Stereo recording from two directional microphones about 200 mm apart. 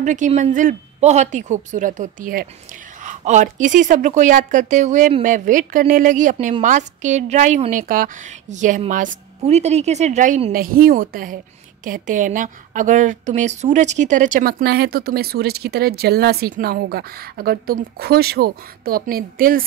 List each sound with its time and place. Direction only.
0.0 s a woman's voice: 40° right (ahead or behind)